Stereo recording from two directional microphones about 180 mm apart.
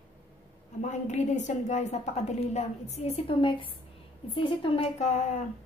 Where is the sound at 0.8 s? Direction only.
40° left (ahead or behind).